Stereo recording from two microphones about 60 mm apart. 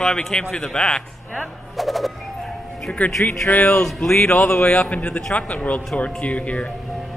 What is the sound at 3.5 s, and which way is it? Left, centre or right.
Speech, centre.